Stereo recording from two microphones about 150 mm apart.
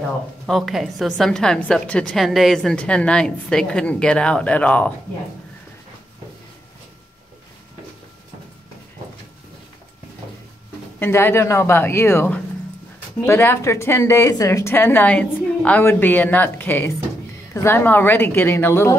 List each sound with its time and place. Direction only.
0.5 s a woman's voice: centre (ahead or behind)
11.0 s a woman's voice: 15° left (ahead or behind)